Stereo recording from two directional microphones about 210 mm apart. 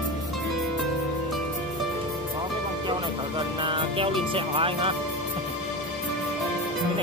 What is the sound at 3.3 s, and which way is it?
Music, 25° right (ahead or behind).